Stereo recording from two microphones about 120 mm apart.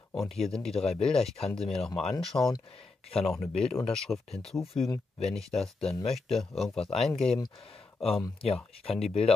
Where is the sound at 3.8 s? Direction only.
5° left (ahead or behind).